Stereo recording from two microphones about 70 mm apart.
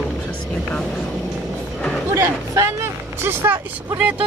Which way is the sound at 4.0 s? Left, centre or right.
Centre.